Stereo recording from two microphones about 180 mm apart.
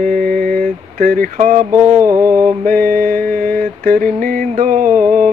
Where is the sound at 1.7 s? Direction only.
15° right (ahead or behind).